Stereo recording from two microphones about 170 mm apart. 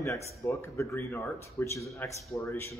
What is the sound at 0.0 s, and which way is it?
Speech, 15° left (ahead or behind).